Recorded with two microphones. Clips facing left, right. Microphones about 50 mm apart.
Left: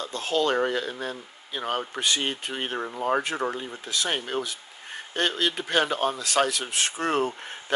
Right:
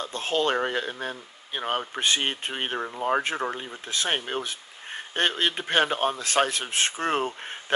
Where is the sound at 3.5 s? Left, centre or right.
Right.